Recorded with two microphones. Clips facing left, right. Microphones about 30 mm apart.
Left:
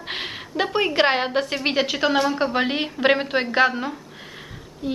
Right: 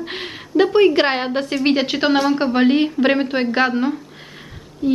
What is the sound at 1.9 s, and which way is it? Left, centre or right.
Speech, right.